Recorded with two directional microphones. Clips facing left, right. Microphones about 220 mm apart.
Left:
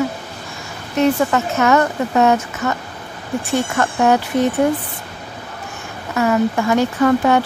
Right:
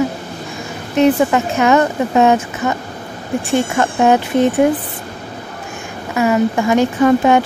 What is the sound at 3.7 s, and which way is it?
Speech, 20° right (ahead or behind).